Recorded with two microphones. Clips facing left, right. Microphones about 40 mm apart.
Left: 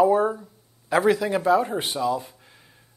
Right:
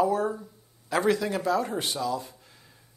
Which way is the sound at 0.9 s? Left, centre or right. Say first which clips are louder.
Left 4 dB; centre.